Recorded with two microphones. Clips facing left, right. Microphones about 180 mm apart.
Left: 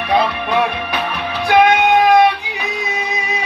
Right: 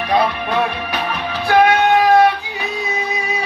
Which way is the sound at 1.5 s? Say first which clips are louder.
Left 1 dB; 15° left (ahead or behind).